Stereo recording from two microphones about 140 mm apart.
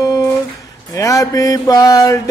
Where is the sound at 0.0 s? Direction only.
25° left (ahead or behind).